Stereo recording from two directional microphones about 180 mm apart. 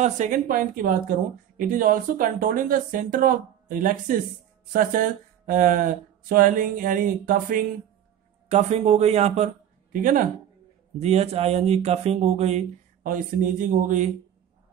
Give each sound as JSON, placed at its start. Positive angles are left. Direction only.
{"t": 0.0, "sound": "speech", "side_deg": -45}
{"t": 8.5, "sound": "speech", "side_deg": -40}
{"t": 10.0, "sound": "speech", "side_deg": -50}
{"t": 11.0, "sound": "speech", "side_deg": -35}